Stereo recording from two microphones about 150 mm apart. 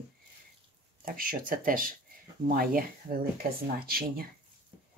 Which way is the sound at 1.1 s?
70° right (ahead or behind).